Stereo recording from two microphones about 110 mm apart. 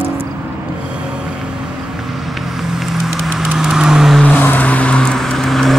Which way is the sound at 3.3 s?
5° right (ahead or behind).